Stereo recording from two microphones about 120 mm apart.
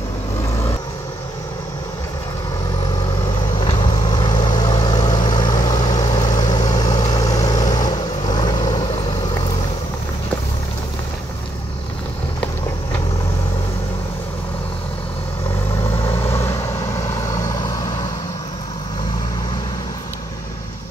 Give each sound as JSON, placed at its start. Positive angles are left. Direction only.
{"t": 3.8, "sound": "vehicle", "side_deg": 35}
{"t": 16.2, "sound": "vehicle", "side_deg": 20}